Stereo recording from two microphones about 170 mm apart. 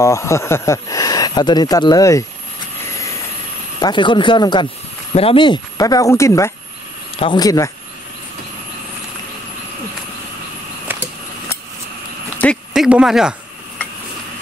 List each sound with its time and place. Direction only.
0.0 s speech: 15° left (ahead or behind)
3.8 s speech: 30° left (ahead or behind)
10.9 s a sound: 10° right (ahead or behind)
12.7 s speech: 5° right (ahead or behind)